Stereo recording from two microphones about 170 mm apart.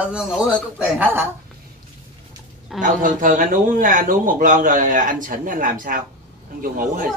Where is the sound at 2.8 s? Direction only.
50° right (ahead or behind).